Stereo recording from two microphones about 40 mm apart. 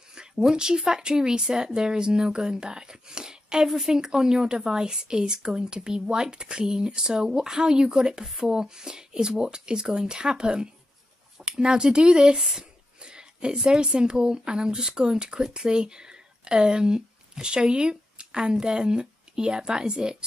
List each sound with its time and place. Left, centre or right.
0.4 s speech: centre